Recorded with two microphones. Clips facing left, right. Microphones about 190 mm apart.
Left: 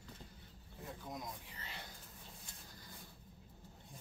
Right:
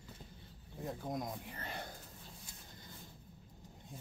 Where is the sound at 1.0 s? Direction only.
50° right (ahead or behind).